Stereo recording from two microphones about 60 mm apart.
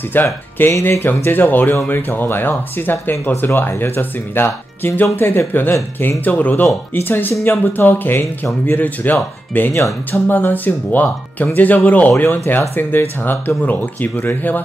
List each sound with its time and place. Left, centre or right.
0.1 s speech: left